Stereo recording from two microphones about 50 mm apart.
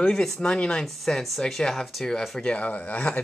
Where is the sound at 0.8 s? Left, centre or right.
Centre.